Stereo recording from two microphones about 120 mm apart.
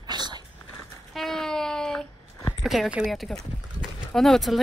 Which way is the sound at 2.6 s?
Centre (ahead or behind).